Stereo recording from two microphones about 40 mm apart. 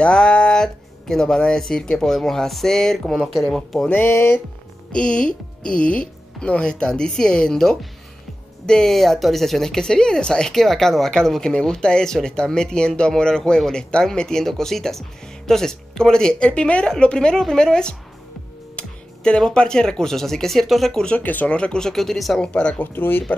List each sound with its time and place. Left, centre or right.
0.0 s a sound: left
1.4 s speech: centre
4.0 s speech: left
4.9 s speech: left
8.9 s speech: centre
18.8 s music: left
19.5 s speech: left
20.6 s speech: centre
21.2 s speech: left
21.5 s speech: left
21.7 s speech: centre
22.4 s speech: left
22.8 s speech: left